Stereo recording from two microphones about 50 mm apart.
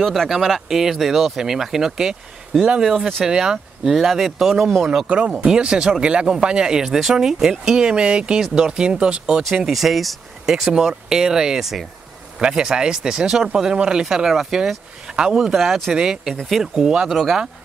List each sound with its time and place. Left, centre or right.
0.0 s speech: centre
5.0 s speech: right
9.7 s speech: centre
12.4 s speech: centre